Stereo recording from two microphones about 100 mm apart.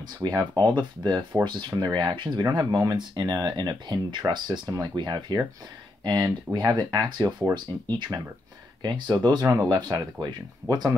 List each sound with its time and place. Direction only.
0.7 s speech: 45° right (ahead or behind)
9.5 s speech: 30° right (ahead or behind)
9.8 s speech: 45° right (ahead or behind)